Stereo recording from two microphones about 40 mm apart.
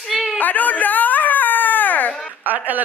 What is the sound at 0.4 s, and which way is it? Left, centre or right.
Speech, left.